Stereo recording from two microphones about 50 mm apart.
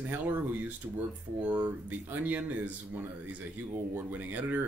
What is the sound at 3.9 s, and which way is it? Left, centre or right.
Speech, right.